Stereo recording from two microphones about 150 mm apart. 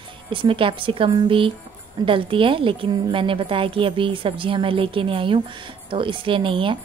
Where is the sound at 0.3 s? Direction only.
35° right (ahead or behind).